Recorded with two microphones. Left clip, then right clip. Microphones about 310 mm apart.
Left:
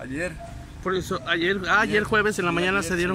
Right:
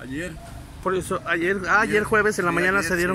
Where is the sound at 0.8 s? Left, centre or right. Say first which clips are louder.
Right 2 dB; centre.